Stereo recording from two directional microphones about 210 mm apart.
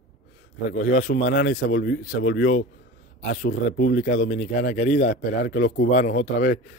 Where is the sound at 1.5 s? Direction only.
50° left (ahead or behind).